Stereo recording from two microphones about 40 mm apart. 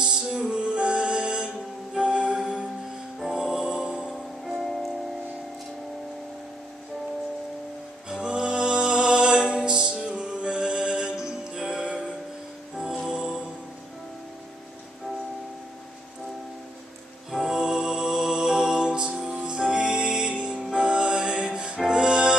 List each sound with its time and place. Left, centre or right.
0.0 s music: centre
0.4 s music: right
3.3 s music: centre
8.1 s music: right
17.3 s music: centre; by 22.3 s right